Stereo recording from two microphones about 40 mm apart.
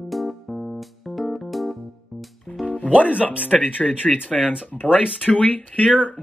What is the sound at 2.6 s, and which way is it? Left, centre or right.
Music, left.